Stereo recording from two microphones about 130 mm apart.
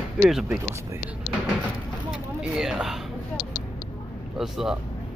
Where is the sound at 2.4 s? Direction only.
5° right (ahead or behind).